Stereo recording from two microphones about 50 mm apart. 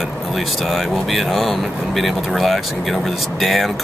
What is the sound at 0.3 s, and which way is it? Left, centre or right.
Speech, centre.